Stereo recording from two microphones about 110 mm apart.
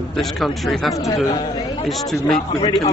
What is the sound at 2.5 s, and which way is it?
Speech, 50° left (ahead or behind).